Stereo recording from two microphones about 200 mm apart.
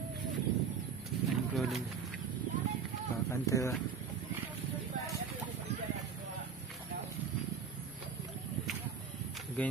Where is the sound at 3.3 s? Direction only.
15° left (ahead or behind).